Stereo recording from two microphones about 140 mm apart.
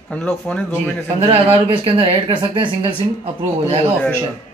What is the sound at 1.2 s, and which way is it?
Speech, 40° right (ahead or behind).